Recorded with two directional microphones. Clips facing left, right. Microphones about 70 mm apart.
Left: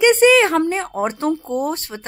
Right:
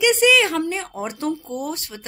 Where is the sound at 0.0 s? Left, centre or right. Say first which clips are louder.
Left 4 dB; left.